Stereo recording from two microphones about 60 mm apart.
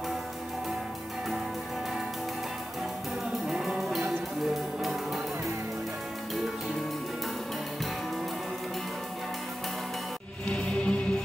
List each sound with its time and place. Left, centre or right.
3.4 s music: centre
10.5 s music: centre